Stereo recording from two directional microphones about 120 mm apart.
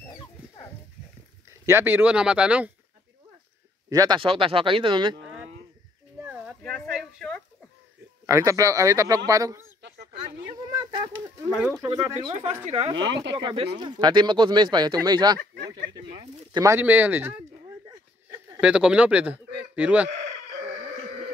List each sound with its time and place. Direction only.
1.7 s speech: 20° right (ahead or behind)
3.9 s speech: 30° right (ahead or behind)
4.2 s speech: 50° right (ahead or behind)
7.0 s a sound: centre (ahead or behind)
8.3 s speech: 25° right (ahead or behind)
10.2 s a sound: 40° right (ahead or behind)
11.8 s speech: 35° right (ahead or behind)
12.6 s a woman's voice: 65° right (ahead or behind)
13.1 s speech: 40° right (ahead or behind)
16.7 s speech: 15° right (ahead or behind)
18.6 s a man's voice: 5° right (ahead or behind)